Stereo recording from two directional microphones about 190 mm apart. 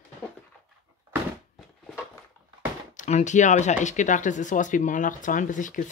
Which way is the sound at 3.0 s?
40° left (ahead or behind).